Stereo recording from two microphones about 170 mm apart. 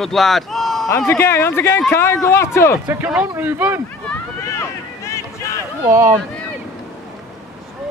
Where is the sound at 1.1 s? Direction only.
15° left (ahead or behind).